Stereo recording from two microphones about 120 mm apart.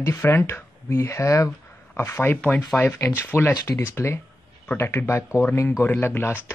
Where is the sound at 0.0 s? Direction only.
20° left (ahead or behind).